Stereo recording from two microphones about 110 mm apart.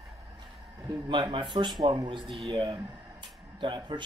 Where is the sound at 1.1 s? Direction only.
45° right (ahead or behind).